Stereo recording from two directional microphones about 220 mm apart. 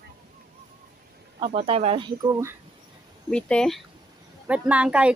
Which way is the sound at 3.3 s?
5° left (ahead or behind).